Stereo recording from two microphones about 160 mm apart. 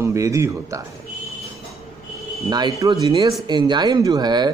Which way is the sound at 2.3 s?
25° right (ahead or behind).